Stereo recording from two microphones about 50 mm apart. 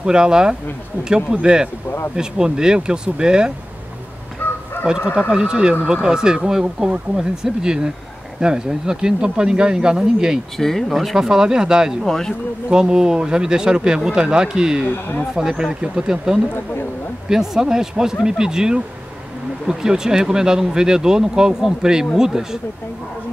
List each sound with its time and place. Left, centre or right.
0.0 s speech: centre
4.4 s fowl: left
4.8 s speech: centre
10.6 s speech: centre
10.9 s speech: centre
12.0 s speech: centre
12.6 s speech: centre
14.9 s speech: left
15.3 s speech: centre